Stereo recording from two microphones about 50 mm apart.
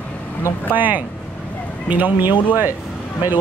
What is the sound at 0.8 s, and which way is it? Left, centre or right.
Speech, right.